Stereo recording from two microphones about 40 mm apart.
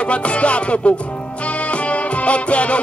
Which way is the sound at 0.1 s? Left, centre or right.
Left.